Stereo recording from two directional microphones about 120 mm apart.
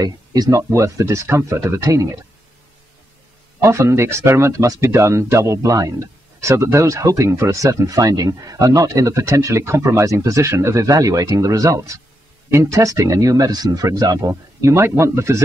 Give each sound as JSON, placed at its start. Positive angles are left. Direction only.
{"t": 0.0, "sound": "speech", "side_deg": -30}
{"t": 3.6, "sound": "speech", "side_deg": -25}